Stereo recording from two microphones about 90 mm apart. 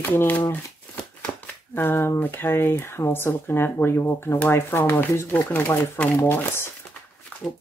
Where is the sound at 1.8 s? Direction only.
25° left (ahead or behind).